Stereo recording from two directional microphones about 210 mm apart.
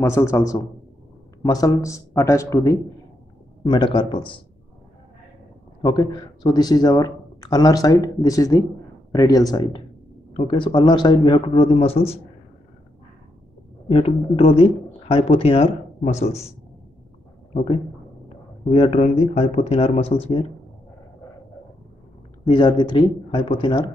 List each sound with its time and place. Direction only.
0.0 s a man's voice: 15° left (ahead or behind)
5.8 s a man's voice: 20° left (ahead or behind)
13.8 s a man's voice: 30° left (ahead or behind)
18.6 s a man's voice: 30° left (ahead or behind)
22.4 s a man's voice: 20° left (ahead or behind)